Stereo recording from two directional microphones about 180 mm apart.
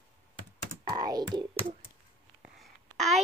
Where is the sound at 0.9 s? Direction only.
20° right (ahead or behind).